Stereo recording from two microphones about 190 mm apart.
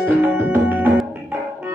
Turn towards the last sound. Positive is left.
turn(degrees=-10)  # may be behind; listen again after turning